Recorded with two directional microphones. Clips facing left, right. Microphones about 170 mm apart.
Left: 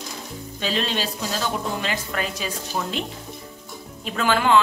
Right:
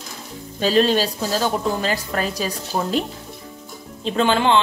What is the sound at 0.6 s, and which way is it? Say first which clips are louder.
Speech: right 9 dB; 40° right (ahead or behind).